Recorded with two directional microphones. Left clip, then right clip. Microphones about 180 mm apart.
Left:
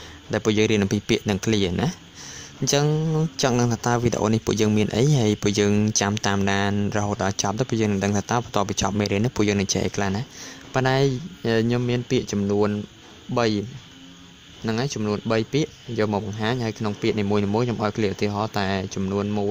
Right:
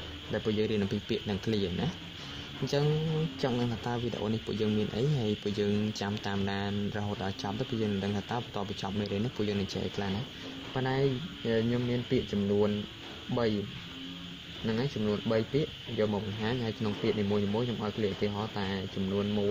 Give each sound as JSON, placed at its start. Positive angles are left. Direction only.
{"t": 0.3, "sound": "a man's voice", "side_deg": 50}
{"t": 14.7, "sound": "a man's voice", "side_deg": 50}